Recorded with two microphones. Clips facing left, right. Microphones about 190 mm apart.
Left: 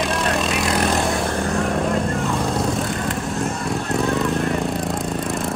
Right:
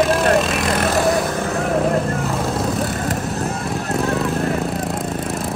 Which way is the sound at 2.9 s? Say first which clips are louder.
Right 2 dB; 45° right (ahead or behind).